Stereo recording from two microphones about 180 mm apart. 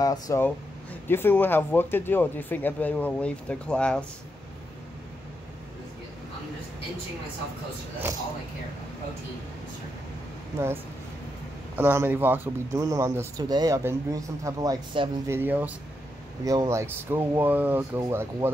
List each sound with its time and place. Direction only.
0.0 s speech: 20° left (ahead or behind)
11.7 s speech: 10° right (ahead or behind)